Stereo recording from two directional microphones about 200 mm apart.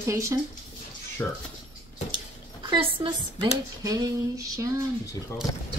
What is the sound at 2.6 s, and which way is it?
A woman's voice, 25° right (ahead or behind).